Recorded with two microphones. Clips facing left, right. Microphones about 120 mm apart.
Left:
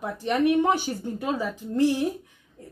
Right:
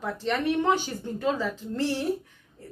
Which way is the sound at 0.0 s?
15° left (ahead or behind).